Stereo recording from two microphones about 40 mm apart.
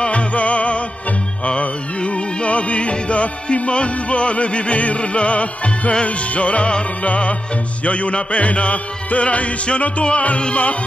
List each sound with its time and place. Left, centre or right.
0.0 s music: left